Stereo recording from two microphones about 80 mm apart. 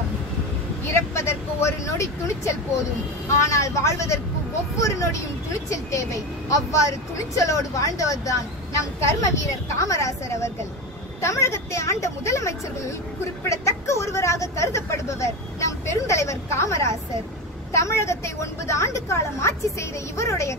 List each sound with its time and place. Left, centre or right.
0.8 s speech: left